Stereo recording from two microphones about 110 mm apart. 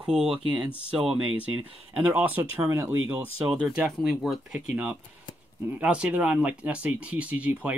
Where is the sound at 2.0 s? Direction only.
15° right (ahead or behind).